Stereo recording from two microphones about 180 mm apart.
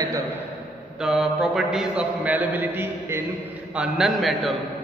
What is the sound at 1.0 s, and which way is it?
A man's voice, centre (ahead or behind).